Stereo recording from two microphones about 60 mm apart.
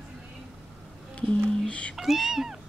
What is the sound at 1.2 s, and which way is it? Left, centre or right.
Speech, left.